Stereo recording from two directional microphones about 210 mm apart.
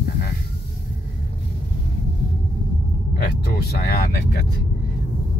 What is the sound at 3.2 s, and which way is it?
Vehicle, 50° left (ahead or behind).